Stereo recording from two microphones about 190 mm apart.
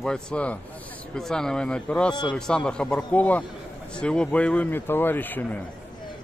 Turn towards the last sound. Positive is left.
turn(degrees=10)  # may be behind; listen again after turning